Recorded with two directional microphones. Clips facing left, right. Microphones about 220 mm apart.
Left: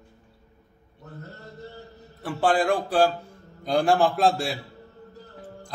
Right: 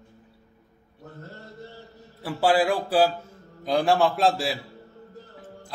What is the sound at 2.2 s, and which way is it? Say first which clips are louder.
A man's voice: right 1 dB; 5° right (ahead or behind).